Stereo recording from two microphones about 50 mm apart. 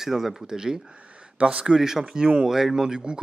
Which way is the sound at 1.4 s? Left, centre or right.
Right.